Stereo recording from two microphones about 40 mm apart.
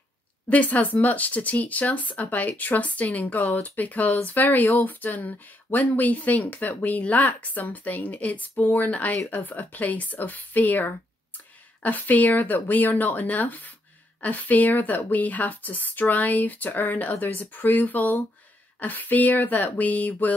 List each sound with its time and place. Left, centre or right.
0.5 s speech: left